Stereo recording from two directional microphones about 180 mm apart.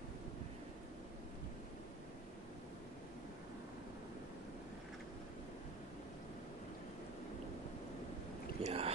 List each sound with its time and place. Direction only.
8.6 s boat: 35° right (ahead or behind)